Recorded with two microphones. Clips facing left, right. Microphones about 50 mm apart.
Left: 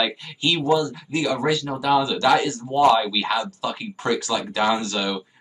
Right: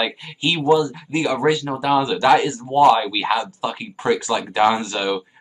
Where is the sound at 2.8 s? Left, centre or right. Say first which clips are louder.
Right 3 dB; centre.